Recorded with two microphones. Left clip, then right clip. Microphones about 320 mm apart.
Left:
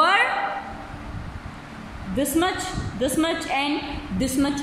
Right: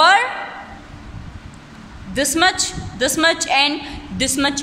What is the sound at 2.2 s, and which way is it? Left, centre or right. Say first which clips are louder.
A man's voice: right 7 dB; right.